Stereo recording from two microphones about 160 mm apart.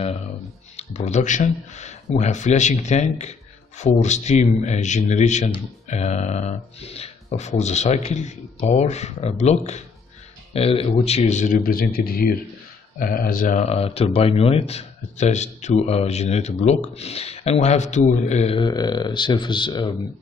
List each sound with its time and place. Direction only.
0.7 s a man's voice: 45° left (ahead or behind)
18.6 s speech: 25° left (ahead or behind)